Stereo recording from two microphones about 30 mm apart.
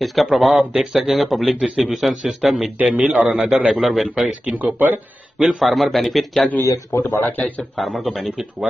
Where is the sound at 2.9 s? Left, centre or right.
Right.